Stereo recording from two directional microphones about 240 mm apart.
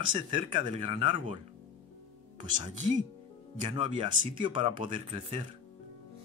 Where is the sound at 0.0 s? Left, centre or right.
Centre.